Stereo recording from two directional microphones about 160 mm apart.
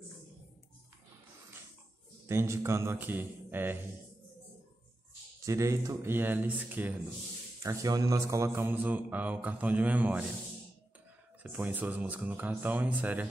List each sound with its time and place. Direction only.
2.2 s speech: 15° right (ahead or behind)
5.4 s speech: 20° right (ahead or behind)
7.6 s speech: 20° right (ahead or behind)
11.4 s speech: 10° right (ahead or behind)